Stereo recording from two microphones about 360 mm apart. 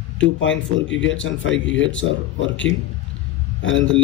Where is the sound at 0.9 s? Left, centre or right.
Left.